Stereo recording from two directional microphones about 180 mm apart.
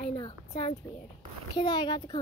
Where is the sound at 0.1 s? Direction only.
25° left (ahead or behind).